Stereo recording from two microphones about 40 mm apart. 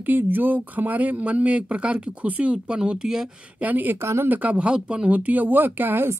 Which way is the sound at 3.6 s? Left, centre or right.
Right.